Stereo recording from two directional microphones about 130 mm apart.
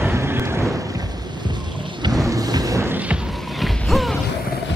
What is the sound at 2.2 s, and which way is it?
Music, 25° right (ahead or behind).